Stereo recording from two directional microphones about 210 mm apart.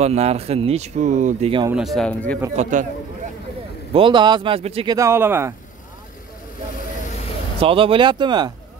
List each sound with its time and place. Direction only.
0.0 s speech: 30° right (ahead or behind)
1.7 s speech: centre (ahead or behind)
2.5 s speech: 35° right (ahead or behind)
3.9 s speech: 25° right (ahead or behind)
4.9 s speech: 10° right (ahead or behind)
7.6 s speech: 25° right (ahead or behind)